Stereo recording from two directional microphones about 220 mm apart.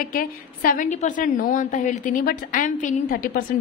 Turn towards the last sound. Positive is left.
turn(degrees=40)  # may be behind; listen again after turning